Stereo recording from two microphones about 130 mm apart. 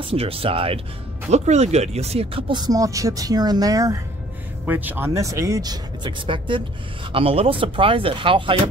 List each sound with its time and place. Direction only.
0.0 s speech: 45° right (ahead or behind)
1.3 s speech: 60° right (ahead or behind); by 4.0 s 25° right (ahead or behind)
4.6 s speech: 15° right (ahead or behind); by 8.5 s 40° right (ahead or behind)